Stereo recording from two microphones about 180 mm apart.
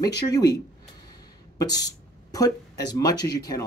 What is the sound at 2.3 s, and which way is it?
Speech, 20° left (ahead or behind).